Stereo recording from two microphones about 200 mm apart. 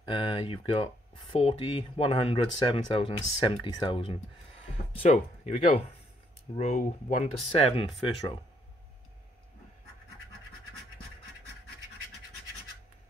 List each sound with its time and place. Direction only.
0.1 s speech: 25° left (ahead or behind)